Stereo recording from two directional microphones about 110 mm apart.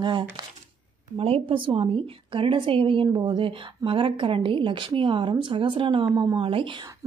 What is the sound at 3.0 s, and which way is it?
Speech, 40° right (ahead or behind).